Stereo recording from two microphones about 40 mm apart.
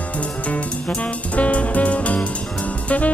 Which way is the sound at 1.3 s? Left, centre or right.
Left.